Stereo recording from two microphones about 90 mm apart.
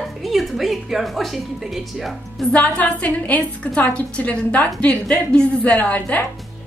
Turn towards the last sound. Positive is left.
turn(degrees=15)  # may be behind; listen again after turning